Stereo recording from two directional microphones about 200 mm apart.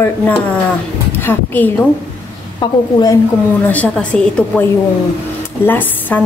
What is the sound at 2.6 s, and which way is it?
Speech, 20° left (ahead or behind).